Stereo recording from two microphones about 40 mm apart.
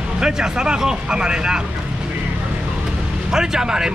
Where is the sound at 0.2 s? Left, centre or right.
Centre.